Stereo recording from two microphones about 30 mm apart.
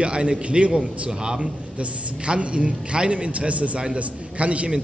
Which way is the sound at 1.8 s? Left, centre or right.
Right.